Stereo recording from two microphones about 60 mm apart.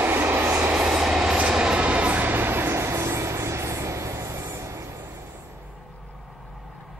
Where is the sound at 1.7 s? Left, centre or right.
Right.